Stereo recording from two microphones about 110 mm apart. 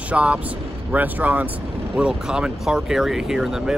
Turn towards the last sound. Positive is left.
turn(degrees=-5)  # may be behind; listen again after turning